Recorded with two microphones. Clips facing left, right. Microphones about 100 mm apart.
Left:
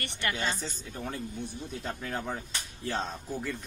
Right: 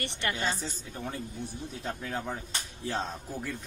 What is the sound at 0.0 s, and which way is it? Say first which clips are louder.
Speech: right 1 dB; 20° right (ahead or behind).